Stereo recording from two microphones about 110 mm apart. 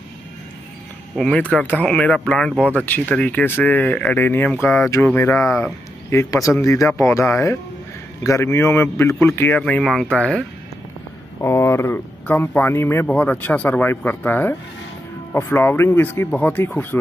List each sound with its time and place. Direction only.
1.1 s speech: 5° left (ahead or behind)
9.6 s speech: 10° left (ahead or behind)
11.4 s speech: 25° left (ahead or behind)